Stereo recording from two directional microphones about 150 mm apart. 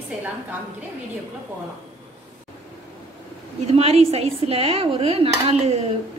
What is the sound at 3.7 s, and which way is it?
A woman's voice, 40° right (ahead or behind).